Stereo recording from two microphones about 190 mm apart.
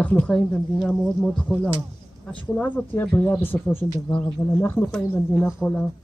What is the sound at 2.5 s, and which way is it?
Speech, 10° left (ahead or behind).